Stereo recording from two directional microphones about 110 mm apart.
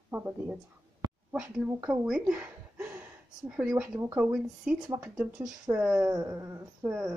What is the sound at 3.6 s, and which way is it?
Speech, 15° right (ahead or behind).